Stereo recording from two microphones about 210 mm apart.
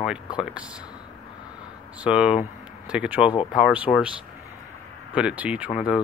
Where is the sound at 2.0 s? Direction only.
5° right (ahead or behind).